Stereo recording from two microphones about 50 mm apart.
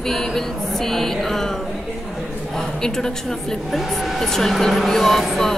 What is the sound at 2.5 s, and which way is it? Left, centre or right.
A woman's voice, centre.